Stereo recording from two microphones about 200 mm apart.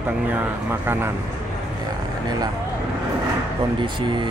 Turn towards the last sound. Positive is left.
turn(degrees=-25)  # may be behind; listen again after turning